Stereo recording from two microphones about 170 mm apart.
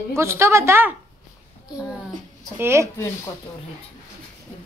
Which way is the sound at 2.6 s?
15° right (ahead or behind).